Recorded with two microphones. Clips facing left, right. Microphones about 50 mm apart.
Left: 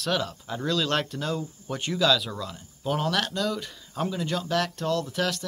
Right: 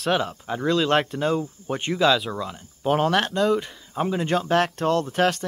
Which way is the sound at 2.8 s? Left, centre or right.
Right.